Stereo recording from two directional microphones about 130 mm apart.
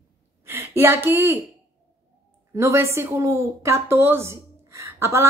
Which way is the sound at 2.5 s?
20° right (ahead or behind).